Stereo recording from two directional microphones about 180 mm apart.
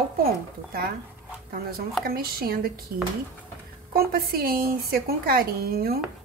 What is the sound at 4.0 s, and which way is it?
A woman's voice, 60° right (ahead or behind).